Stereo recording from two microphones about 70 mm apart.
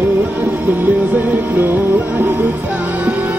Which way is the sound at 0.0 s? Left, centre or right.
Right.